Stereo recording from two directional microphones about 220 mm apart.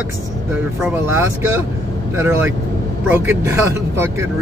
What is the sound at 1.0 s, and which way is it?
Speech, 10° right (ahead or behind).